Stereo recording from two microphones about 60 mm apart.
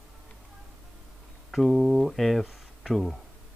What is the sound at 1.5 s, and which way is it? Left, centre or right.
Speech, centre.